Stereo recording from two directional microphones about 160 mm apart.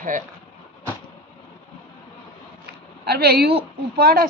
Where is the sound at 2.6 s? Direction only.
80° right.